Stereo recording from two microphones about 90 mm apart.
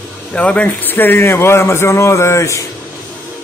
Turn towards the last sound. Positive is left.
turn(degrees=35)  # may be behind; listen again after turning